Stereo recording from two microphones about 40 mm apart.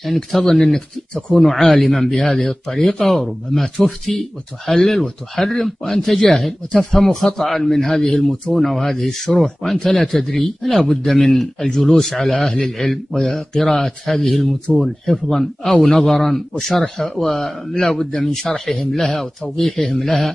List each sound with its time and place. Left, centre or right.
0.0 s a man's voice: centre
8.0 s a man's voice: centre
8.5 s a man's voice: centre